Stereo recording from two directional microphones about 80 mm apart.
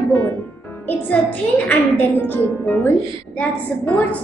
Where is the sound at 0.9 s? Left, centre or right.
Left.